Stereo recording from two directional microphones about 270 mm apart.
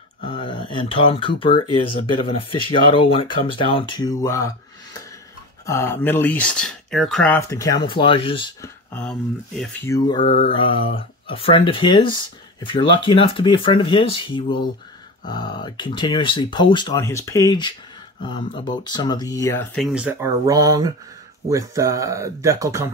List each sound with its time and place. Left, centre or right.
0.2 s speech: centre
2.2 s mantra: centre
5.7 s speech: centre
8.9 s mantra: centre
15.2 s speech: centre